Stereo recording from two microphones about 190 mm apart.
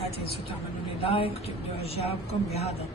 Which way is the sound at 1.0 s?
30° left (ahead or behind).